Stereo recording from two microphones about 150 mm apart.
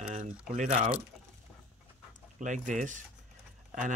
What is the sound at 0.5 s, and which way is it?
Speech, 60° right (ahead or behind).